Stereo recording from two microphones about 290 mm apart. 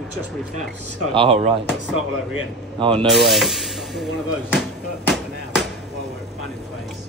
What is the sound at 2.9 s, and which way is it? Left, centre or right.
Speech, centre.